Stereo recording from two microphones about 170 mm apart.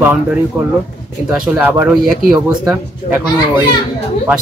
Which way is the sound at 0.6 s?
10° right (ahead or behind).